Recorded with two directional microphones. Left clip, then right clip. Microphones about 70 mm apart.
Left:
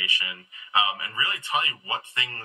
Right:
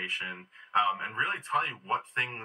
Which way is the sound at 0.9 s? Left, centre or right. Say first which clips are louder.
Left 7 dB; left.